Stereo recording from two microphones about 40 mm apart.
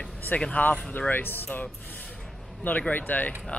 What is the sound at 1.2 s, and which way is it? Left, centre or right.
Speech, left.